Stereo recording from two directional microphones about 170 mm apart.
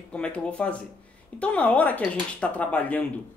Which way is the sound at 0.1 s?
5° left (ahead or behind).